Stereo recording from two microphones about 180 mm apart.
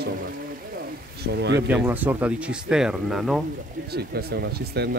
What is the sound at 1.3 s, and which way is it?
Speech, 75° right (ahead or behind).